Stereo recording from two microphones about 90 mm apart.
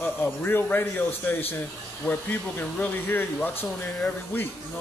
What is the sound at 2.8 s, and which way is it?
Speech, 20° left (ahead or behind).